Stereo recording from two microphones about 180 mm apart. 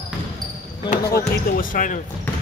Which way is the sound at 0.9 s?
50° left (ahead or behind).